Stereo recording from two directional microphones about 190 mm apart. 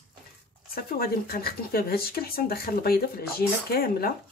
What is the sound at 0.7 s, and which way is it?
Speech, 55° left (ahead or behind).